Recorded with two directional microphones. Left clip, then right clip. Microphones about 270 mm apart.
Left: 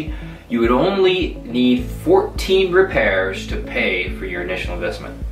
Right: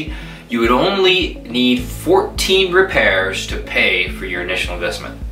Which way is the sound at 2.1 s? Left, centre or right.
Left.